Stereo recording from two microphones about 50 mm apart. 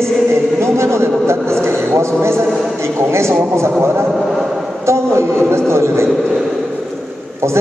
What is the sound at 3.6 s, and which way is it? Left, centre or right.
Speech, right.